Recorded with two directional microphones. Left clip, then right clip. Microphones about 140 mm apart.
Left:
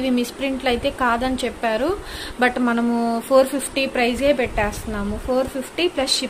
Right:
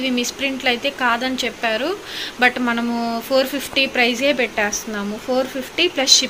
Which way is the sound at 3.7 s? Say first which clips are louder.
Right 5 dB; 15° left (ahead or behind).